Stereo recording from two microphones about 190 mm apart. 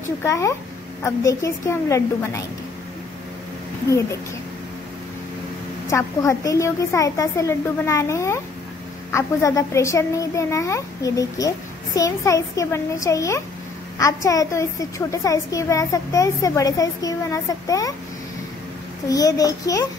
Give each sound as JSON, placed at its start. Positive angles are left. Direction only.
{"t": 0.2, "sound": "a woman's voice", "side_deg": 15}
{"t": 5.9, "sound": "a woman's voice", "side_deg": 15}
{"t": 19.0, "sound": "a child's voice", "side_deg": 20}